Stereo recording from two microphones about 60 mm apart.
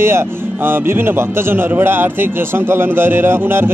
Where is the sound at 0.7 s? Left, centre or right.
Right.